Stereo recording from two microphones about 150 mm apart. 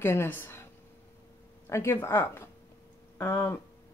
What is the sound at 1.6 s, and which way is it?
Speech, 20° left (ahead or behind).